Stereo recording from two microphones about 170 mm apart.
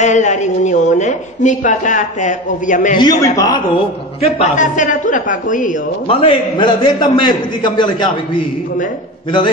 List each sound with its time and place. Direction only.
0.0 s a woman's voice: 45° left (ahead or behind)
3.0 s a man's voice: 20° left (ahead or behind)
4.2 s a woman's voice: 45° left (ahead or behind)
6.0 s a man's voice: 30° left (ahead or behind)